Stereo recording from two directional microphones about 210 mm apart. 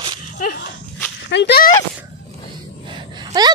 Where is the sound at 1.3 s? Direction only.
55° left (ahead or behind).